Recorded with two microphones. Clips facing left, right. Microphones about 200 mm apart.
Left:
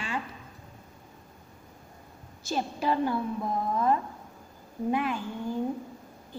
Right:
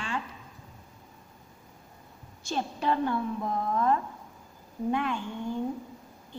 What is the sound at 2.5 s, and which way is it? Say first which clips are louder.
A woman's voice: left 1 dB; 5° left (ahead or behind).